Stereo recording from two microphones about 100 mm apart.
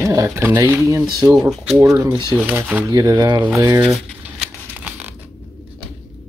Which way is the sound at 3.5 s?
30° right (ahead or behind).